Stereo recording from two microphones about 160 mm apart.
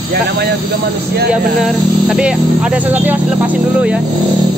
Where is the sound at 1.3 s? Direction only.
5° right (ahead or behind).